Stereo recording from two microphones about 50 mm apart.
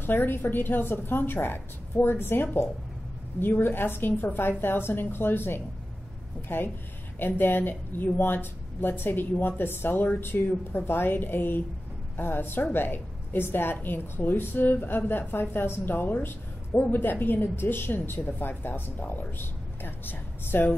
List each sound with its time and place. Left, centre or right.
0.0 s a woman's voice: left